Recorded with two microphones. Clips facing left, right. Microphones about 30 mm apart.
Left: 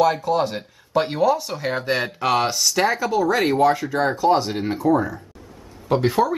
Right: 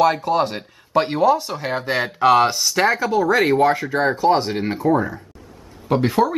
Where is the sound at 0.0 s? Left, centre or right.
Centre.